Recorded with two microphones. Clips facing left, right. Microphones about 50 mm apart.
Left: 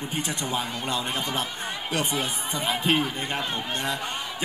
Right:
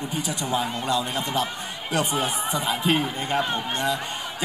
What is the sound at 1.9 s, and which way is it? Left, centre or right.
Speech, right.